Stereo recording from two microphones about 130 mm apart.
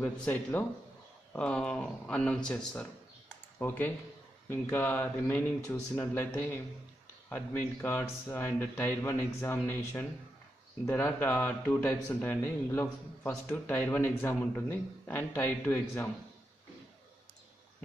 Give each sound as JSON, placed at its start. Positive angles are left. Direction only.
{"t": 0.0, "sound": "speech", "side_deg": 10}